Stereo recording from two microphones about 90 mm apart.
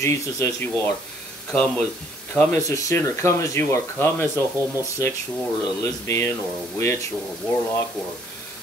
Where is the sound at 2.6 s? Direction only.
35° left (ahead or behind).